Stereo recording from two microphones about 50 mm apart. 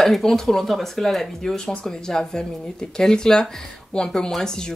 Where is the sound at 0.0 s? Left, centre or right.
Centre.